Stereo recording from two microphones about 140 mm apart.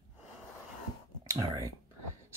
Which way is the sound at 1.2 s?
25° right (ahead or behind).